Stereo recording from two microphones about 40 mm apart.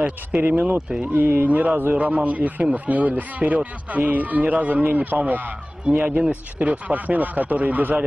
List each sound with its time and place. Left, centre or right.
0.4 s speech: right
0.7 s speech: centre
1.0 s speech: right
1.5 s speech: right